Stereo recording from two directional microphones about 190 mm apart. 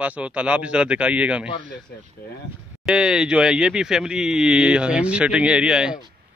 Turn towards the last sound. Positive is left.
turn(degrees=-5)  # may be behind; listen again after turning